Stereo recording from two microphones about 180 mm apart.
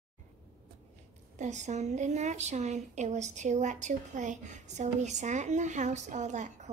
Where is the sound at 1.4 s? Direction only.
40° right (ahead or behind).